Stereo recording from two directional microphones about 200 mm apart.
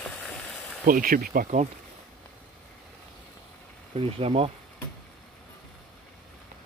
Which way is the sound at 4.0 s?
30° right (ahead or behind).